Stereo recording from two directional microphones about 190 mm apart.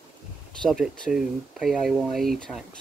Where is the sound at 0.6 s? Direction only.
Centre (ahead or behind).